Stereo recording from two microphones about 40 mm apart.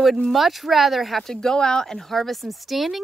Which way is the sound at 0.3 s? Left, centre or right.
Centre.